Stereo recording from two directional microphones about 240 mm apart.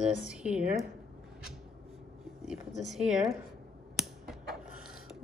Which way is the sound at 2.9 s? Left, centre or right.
Centre.